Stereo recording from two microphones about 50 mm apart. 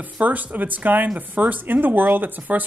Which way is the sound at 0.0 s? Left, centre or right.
Right.